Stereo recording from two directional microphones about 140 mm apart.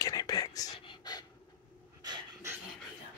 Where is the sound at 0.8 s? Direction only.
30° left (ahead or behind).